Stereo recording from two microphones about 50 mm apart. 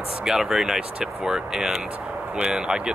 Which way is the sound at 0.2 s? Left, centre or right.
Centre.